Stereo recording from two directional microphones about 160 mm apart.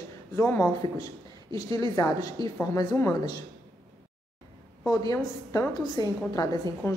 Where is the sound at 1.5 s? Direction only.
20° left (ahead or behind).